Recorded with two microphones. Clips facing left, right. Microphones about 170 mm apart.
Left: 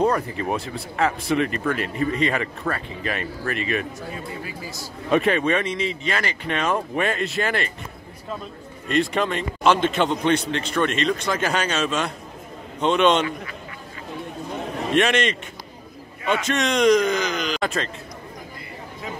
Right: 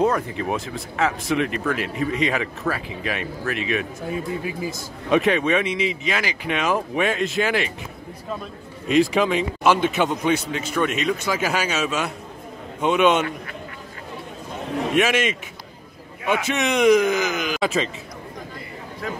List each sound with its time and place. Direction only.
0.0 s speech: centre (ahead or behind)
4.1 s speech: 20° right (ahead or behind)
5.1 s speech: centre (ahead or behind)
8.8 s speech: 5° right (ahead or behind)
15.0 s speech: 5° right (ahead or behind)